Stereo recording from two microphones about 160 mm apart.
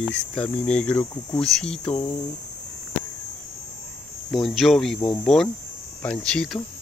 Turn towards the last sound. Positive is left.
turn(degrees=5)  # may be behind; listen again after turning